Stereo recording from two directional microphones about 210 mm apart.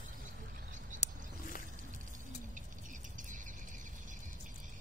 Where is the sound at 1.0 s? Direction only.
35° left (ahead or behind).